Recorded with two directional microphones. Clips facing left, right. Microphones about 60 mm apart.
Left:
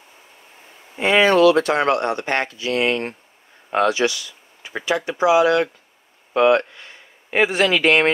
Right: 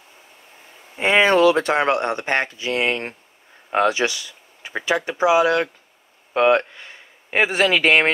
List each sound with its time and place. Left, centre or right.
0.9 s speech: right